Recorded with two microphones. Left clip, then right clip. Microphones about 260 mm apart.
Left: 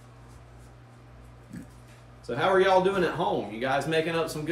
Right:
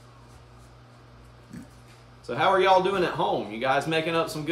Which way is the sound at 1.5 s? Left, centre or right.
Centre.